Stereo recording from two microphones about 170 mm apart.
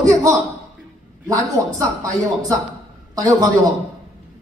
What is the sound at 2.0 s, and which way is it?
A man's voice, 20° right (ahead or behind).